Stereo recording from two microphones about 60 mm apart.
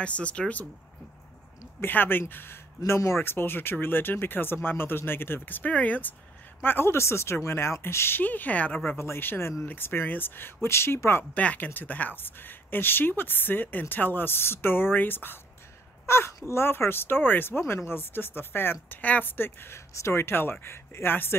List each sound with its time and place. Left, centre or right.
0.0 s speech: centre
1.8 s speech: left
2.9 s speech: left
6.6 s speech: left
8.2 s speech: left
8.9 s speech: left
11.3 s speech: left
16.1 s speech: left
19.0 s speech: left
19.3 s speech: left